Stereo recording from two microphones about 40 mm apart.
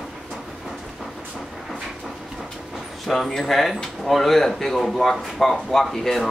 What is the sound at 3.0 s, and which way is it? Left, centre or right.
A man's voice, centre.